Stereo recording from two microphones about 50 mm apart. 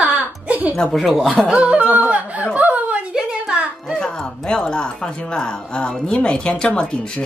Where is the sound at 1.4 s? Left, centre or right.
Right.